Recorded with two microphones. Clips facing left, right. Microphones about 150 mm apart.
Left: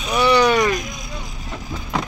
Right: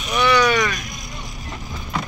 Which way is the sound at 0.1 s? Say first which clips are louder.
Left 2 dB; 35° left (ahead or behind).